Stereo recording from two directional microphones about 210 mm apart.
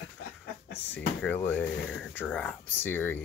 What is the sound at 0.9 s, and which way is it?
Speech, 5° left (ahead or behind).